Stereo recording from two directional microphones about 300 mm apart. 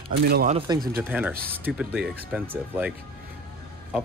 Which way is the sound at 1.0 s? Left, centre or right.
Centre.